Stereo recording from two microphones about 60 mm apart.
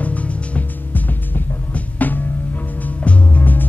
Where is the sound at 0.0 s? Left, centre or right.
Left.